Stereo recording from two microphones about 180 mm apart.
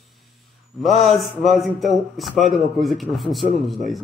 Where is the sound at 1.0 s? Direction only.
Centre (ahead or behind).